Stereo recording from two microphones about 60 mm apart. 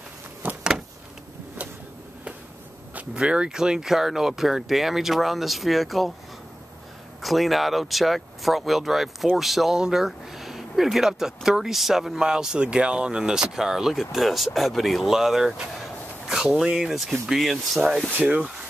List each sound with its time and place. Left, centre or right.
0.4 s vehicle: right
3.2 s speech: centre
7.2 s speech: centre
16.6 s speech: centre
18.2 s speech: right